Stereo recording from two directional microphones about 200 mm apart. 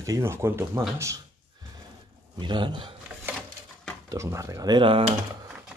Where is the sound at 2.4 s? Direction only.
25° right (ahead or behind).